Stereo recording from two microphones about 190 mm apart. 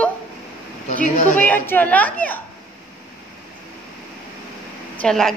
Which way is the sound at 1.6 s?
10° left (ahead or behind).